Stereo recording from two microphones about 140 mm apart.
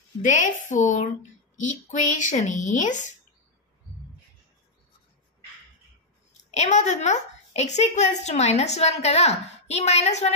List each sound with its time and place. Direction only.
0.2 s speech: 60° left (ahead or behind)
6.5 s a woman's voice: 55° left (ahead or behind)